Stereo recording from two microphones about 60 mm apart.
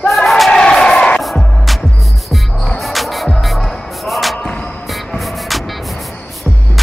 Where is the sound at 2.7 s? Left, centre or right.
Centre.